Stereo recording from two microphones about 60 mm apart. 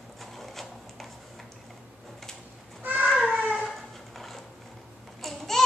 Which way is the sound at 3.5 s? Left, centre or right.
Centre.